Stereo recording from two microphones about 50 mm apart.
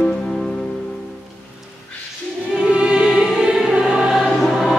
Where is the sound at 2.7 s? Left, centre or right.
Centre.